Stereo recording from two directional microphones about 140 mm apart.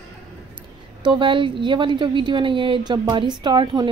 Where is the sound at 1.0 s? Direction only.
35° right (ahead or behind).